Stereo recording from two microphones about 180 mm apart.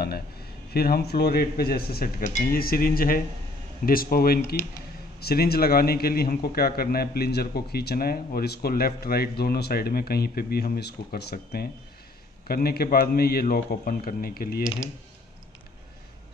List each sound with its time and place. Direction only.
0.7 s a man's voice: 60° left (ahead or behind)